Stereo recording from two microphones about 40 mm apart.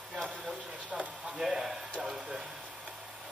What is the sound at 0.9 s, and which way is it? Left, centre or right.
Speech, centre.